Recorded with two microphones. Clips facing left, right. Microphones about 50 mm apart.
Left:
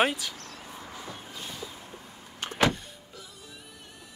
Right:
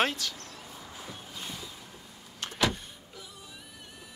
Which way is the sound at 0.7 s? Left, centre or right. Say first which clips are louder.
Left 5 dB; left.